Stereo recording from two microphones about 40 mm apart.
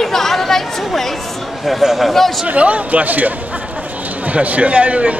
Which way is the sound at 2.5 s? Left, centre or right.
Right.